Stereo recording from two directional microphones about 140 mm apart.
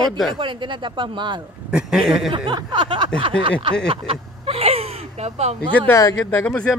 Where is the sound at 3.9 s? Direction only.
45° right (ahead or behind).